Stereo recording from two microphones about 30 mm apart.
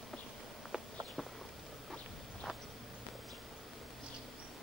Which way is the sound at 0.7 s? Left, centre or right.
Centre.